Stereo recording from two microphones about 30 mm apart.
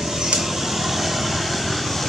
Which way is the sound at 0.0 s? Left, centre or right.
Centre.